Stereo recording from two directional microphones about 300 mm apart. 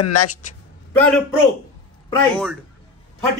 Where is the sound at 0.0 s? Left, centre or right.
Left.